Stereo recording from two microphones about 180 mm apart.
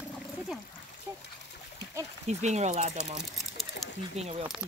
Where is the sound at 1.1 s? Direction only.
10° right (ahead or behind).